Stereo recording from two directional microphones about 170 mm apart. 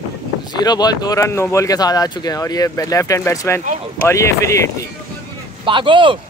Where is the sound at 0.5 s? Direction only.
25° left (ahead or behind).